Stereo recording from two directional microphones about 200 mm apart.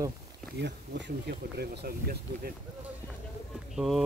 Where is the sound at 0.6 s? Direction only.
55° right (ahead or behind).